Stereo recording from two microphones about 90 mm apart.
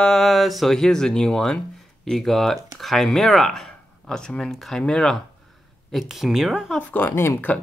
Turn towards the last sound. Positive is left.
turn(degrees=25)  # may be behind; listen again after turning